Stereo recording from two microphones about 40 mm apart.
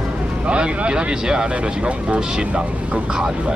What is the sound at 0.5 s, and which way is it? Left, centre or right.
Speech, right.